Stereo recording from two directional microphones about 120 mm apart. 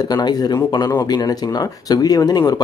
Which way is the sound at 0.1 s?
35° left (ahead or behind).